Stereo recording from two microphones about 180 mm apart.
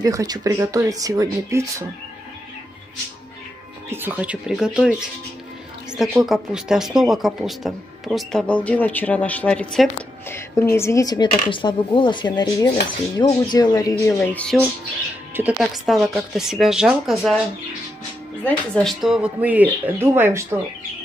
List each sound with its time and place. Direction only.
0.0 s speech: 20° right (ahead or behind)
3.9 s speech: 10° right (ahead or behind); by 14.7 s 5° left (ahead or behind)
15.3 s speech: 5° right (ahead or behind)
18.4 s speech: 5° left (ahead or behind); by 20.4 s 15° right (ahead or behind)